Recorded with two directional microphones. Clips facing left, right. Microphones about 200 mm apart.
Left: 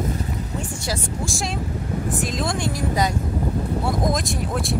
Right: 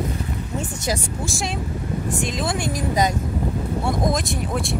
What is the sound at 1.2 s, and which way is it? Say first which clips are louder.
Speech: even; centre (ahead or behind).